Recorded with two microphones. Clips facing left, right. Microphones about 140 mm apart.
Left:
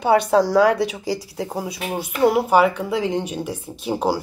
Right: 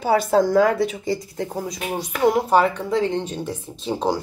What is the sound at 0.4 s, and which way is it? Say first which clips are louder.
Speech: right 2 dB; 80° left.